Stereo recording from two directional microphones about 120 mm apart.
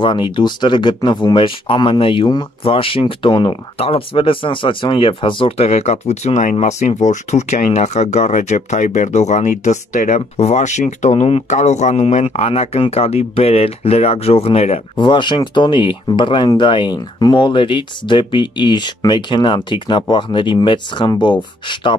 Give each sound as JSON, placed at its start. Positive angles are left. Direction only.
{"t": 0.0, "sound": "speech", "side_deg": 40}
{"t": 5.6, "sound": "speech", "side_deg": 70}
{"t": 6.5, "sound": "speech", "side_deg": 65}
{"t": 15.0, "sound": "speech", "side_deg": 40}